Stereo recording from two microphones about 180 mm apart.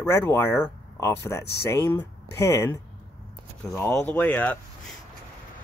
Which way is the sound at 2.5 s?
15° left (ahead or behind).